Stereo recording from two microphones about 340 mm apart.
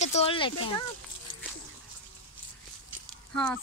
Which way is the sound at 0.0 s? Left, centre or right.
Centre.